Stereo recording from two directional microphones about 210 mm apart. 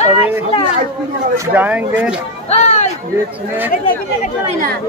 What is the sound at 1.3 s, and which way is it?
Speech, 10° right (ahead or behind).